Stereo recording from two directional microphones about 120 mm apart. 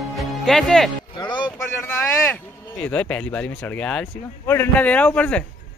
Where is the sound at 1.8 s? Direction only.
20° left (ahead or behind).